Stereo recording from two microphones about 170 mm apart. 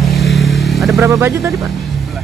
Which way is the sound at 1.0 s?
15° right (ahead or behind).